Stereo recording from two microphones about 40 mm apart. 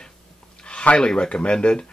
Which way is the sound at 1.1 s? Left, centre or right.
Left.